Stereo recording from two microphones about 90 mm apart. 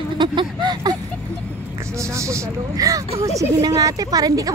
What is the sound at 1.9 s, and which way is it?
Vehicle, 35° right (ahead or behind).